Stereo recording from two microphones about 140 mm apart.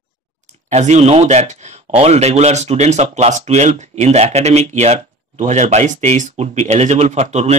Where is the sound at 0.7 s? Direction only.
55° right (ahead or behind).